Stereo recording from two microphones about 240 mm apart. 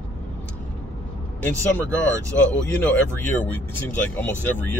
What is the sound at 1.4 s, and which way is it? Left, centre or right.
Speech, centre.